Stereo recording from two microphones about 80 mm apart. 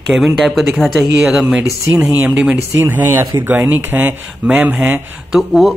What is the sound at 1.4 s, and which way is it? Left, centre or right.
Speech, centre.